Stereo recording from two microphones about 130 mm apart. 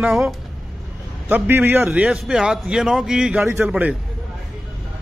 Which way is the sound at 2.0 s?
5° right (ahead or behind).